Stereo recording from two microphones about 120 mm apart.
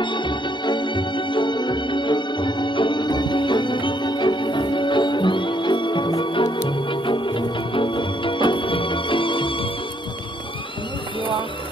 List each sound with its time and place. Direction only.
0.0 s music: 40° left (ahead or behind)
6.7 s organ: 45° left (ahead or behind)